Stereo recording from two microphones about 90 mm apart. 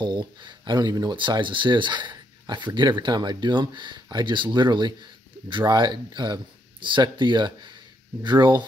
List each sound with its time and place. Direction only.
0.0 s speech: 60° right (ahead or behind)